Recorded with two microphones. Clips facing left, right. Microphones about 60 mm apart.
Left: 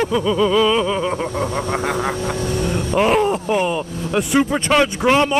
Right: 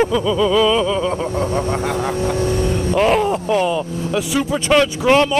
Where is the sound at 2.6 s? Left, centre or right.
Left.